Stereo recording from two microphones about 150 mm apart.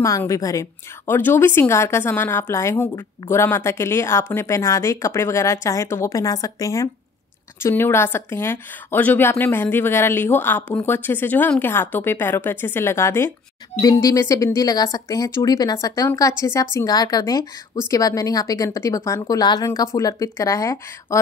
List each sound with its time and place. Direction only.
0.0 s a woman's voice: 20° left (ahead or behind)